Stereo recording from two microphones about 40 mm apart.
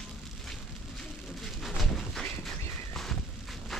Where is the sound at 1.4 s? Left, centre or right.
Centre.